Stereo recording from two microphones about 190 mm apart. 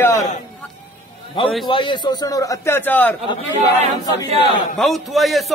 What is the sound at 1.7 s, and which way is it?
A man's voice, 25° left (ahead or behind).